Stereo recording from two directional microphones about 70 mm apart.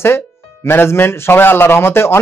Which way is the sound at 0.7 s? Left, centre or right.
Left.